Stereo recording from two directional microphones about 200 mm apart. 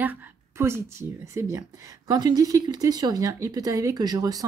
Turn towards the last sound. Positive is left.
turn(degrees=-20)  # may be behind; listen again after turning